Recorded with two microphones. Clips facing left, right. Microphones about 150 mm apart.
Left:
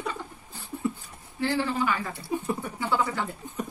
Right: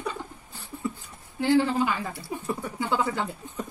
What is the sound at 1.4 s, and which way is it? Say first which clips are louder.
Speech: right 4 dB; 15° right (ahead or behind).